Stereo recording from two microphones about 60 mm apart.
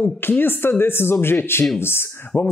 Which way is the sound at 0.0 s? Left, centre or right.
Left.